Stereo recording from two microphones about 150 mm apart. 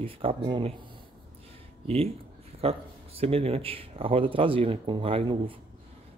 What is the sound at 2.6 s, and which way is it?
Speech, 40° right (ahead or behind).